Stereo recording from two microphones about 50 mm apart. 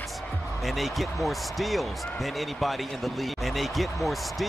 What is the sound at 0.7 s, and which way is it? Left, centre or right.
Speech, centre.